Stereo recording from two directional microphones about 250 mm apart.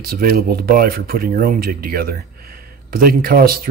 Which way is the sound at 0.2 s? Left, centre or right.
Right.